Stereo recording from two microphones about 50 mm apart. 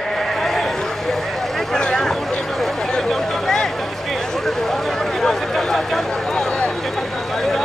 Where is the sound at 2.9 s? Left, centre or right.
Centre.